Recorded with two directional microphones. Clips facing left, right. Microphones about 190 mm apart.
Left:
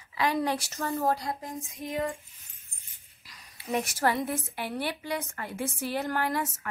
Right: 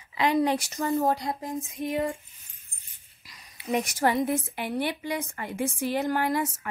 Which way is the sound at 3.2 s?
15° right (ahead or behind).